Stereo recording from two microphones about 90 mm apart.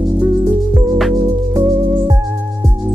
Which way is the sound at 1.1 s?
50° right (ahead or behind).